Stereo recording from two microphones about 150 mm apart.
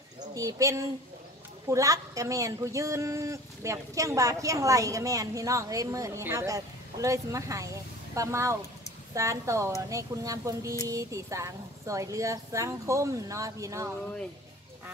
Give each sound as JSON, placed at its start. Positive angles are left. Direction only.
{"t": 0.3, "sound": "speech", "side_deg": -20}